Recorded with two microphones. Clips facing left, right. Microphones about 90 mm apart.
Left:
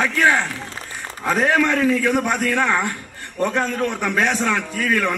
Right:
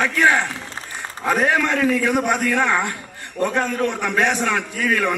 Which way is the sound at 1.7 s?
15° right (ahead or behind).